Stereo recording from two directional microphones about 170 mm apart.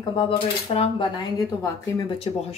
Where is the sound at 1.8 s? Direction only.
25° left (ahead or behind).